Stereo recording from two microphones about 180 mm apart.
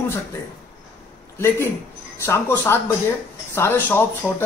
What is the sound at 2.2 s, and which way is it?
Speech, 15° left (ahead or behind).